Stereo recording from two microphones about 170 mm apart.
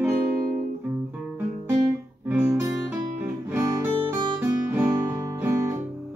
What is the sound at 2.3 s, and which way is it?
Guitar, 15° right (ahead or behind).